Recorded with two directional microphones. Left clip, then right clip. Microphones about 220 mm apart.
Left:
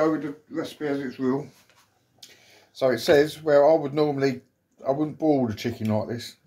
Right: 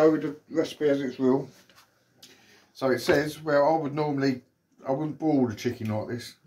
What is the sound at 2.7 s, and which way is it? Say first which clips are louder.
Speech: left 4 dB; 35° left (ahead or behind).